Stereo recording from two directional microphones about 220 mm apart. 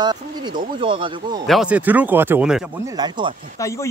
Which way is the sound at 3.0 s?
20° right (ahead or behind).